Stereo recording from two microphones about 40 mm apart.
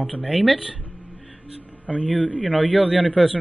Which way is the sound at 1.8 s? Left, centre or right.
Left.